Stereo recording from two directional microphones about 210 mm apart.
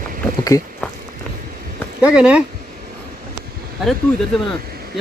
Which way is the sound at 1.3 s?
5° left (ahead or behind).